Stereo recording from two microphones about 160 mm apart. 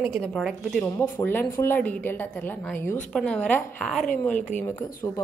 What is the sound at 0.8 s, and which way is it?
A woman's voice, 15° left (ahead or behind).